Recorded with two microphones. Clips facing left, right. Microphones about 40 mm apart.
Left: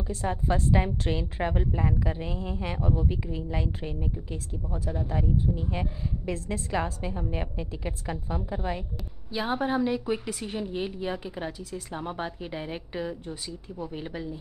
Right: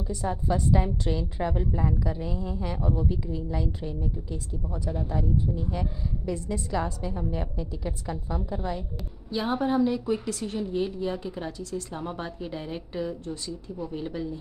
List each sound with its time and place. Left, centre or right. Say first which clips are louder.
0.2 s a woman's voice: even; left
5.1 s a woman's voice: left 1 dB; left
9.3 s a woman's voice: right 1 dB; centre